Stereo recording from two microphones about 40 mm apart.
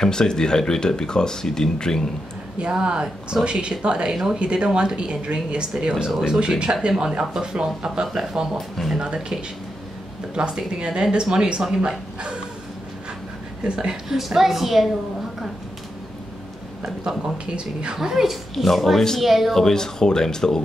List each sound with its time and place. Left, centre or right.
0.0 s speech: centre
2.8 s speech: right
8.5 s a woman's voice: centre
8.9 s speech: right
13.7 s speech: right
14.0 s a woman's voice: centre
17.5 s speech: right
17.9 s speech: centre
18.5 s a woman's voice: centre
19.5 s speech: centre